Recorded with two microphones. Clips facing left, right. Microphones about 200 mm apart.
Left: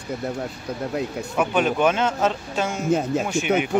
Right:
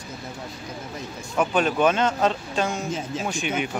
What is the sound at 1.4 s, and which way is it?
Speech, 10° left (ahead or behind).